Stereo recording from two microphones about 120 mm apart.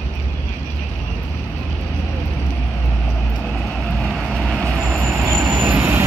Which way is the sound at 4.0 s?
Centre (ahead or behind).